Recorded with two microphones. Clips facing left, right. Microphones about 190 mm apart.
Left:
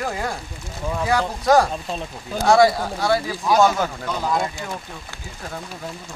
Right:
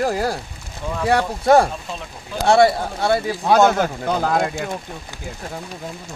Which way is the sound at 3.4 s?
65° right (ahead or behind).